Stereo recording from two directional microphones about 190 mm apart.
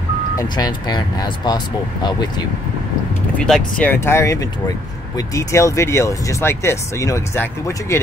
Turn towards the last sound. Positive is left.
turn(degrees=15)  # may be behind; listen again after turning